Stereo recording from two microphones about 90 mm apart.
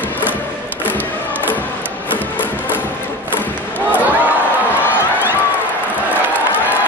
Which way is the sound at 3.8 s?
20° right (ahead or behind).